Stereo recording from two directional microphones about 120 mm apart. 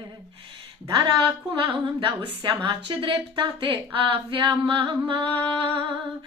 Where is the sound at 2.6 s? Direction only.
45° right (ahead or behind).